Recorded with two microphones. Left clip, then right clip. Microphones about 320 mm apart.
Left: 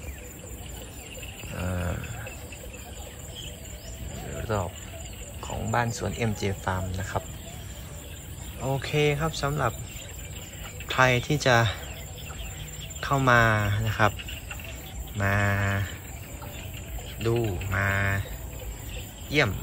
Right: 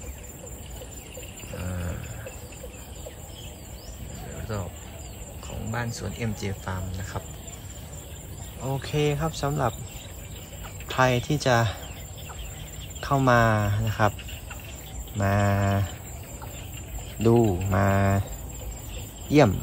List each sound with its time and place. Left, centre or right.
1.6 s a sound: centre
4.4 s a sound: centre
5.7 s speech: centre
8.6 s speech: centre
10.9 s speech: centre
13.0 s speech: centre
13.8 s a sound: centre
15.1 s speech: centre
17.2 s speech: centre
19.2 s speech: centre